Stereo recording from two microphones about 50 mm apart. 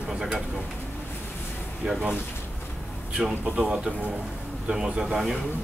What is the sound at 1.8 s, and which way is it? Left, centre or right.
Speech, right.